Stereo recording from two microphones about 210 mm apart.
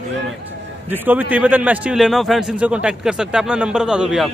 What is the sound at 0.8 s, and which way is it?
A man's voice, 10° right (ahead or behind).